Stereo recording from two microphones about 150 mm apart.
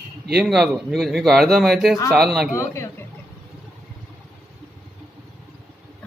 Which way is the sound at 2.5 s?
20° left (ahead or behind).